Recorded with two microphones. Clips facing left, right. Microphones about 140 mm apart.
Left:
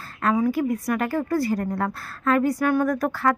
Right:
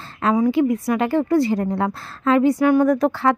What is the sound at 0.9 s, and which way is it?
A woman's voice, 25° right (ahead or behind).